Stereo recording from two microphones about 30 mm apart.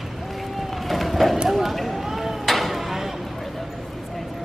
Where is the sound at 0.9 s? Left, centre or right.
Centre.